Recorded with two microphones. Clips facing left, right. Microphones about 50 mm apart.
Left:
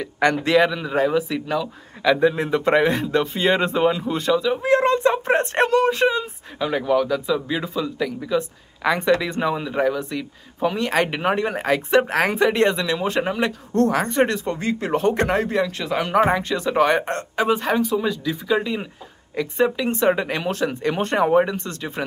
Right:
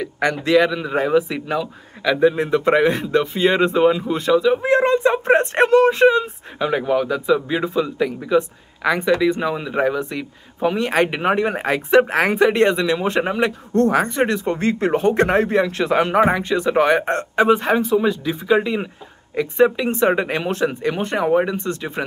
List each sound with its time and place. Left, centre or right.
0.4 s a man's voice: centre
0.8 s speech: centre
2.0 s a man's voice: centre
4.6 s a sound: right
5.8 s speech: right
8.8 s a man's voice: centre
9.7 s speech: centre
14.6 s speech: right
14.9 s speech: centre
15.3 s speech: right
16.1 s speech: centre
17.1 s speech: right
17.5 s speech: centre